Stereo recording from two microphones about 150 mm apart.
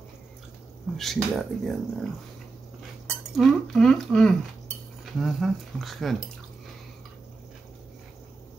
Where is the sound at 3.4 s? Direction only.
Centre (ahead or behind).